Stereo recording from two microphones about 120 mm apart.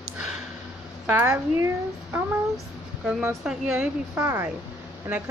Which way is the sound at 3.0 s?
10° right (ahead or behind).